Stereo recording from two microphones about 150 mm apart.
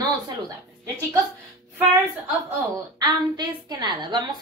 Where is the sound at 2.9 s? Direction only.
25° right (ahead or behind).